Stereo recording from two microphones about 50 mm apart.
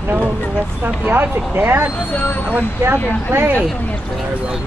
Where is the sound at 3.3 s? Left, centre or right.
Right.